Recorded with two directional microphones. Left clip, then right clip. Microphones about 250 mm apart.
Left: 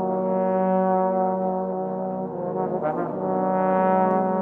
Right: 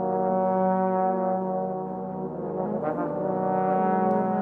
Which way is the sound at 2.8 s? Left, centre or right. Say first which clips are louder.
Left 2 dB; left.